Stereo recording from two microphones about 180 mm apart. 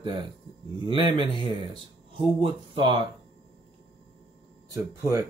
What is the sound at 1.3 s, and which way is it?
Speech, 30° left (ahead or behind).